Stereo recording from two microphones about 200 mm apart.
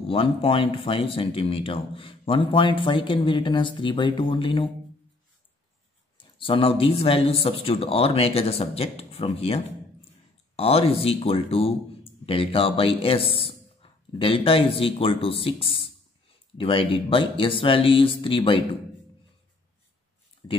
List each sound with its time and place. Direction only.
0.1 s speech: 25° left (ahead or behind)
6.1 s speech: 25° left (ahead or behind)
20.4 s speech: 15° left (ahead or behind)